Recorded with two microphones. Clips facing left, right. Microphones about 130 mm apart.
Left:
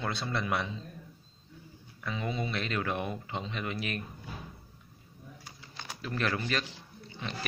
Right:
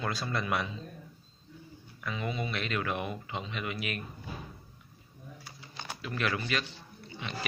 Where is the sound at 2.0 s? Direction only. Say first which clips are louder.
Left 1 dB; 30° left (ahead or behind).